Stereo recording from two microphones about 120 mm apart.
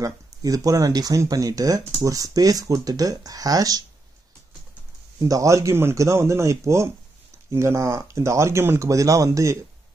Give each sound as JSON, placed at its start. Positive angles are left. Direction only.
{"t": 0.0, "sound": "speech", "side_deg": -30}
{"t": 5.2, "sound": "speech", "side_deg": -30}